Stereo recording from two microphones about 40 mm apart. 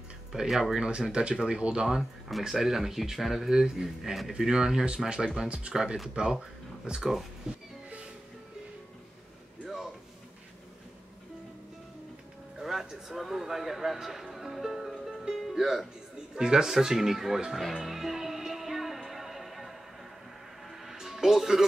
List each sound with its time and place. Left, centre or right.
0.3 s speech: centre
0.7 s speech: right
1.9 s speech: centre
3.4 s speech: centre
5.5 s speech: right
7.5 s music: right
12.5 s a sound: centre
15.3 s music: centre
16.3 s speech: centre
17.5 s music: centre
20.7 s music: centre